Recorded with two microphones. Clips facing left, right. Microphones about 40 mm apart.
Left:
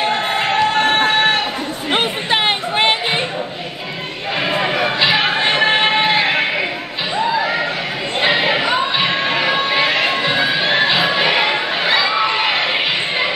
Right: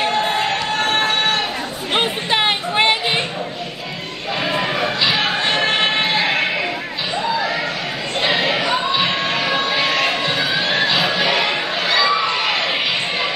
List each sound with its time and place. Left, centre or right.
0.1 s run: left
2.3 s music: centre
4.5 s a sound: left
8.2 s choir: left